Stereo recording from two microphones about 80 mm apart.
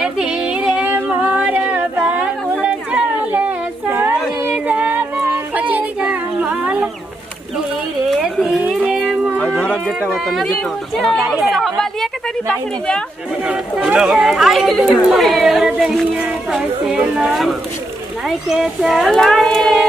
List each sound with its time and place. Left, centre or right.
0.0 s music: centre
0.8 s a sound: right
5.3 s music: centre
8.4 s music: centre
8.8 s music: right
9.6 s a sound: centre
10.0 s speech: centre
13.7 s speech: centre
18.5 s speech: centre